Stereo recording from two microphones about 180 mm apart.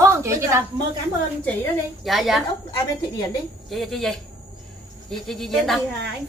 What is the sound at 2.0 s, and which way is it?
Speech, centre (ahead or behind).